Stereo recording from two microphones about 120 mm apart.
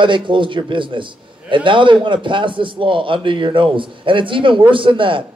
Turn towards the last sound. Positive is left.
turn(degrees=-45)  # may be behind; listen again after turning